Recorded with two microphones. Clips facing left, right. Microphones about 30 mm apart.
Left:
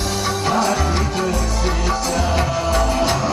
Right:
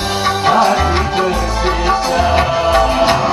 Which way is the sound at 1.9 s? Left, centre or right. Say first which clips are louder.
Right 8 dB; right.